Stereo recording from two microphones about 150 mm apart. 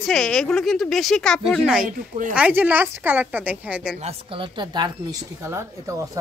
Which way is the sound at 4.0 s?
40° right (ahead or behind).